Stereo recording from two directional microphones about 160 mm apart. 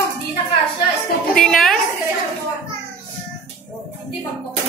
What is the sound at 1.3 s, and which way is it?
Music, centre (ahead or behind).